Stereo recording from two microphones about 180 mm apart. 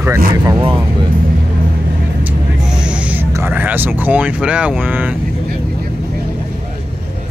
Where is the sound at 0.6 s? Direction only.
30° right (ahead or behind).